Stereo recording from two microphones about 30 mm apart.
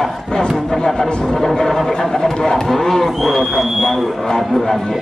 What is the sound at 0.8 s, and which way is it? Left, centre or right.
Speech, centre.